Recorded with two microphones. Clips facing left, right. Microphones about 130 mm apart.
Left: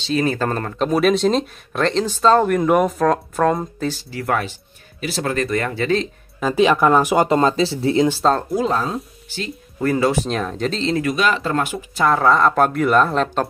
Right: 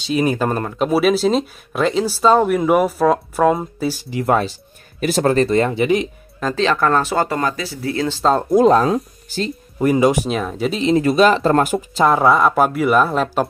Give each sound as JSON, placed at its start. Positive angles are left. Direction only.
{"t": 0.0, "sound": "speech", "side_deg": -15}
{"t": 6.4, "sound": "speech", "side_deg": 10}
{"t": 8.5, "sound": "speech", "side_deg": -50}
{"t": 9.8, "sound": "speech", "side_deg": -15}
{"t": 11.0, "sound": "speech", "side_deg": -35}
{"t": 11.9, "sound": "speech", "side_deg": -20}